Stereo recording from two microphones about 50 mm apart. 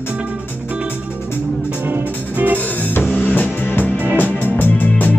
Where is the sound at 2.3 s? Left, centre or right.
Right.